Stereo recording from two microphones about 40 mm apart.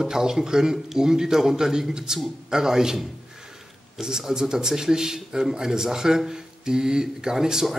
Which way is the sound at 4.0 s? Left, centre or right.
Centre.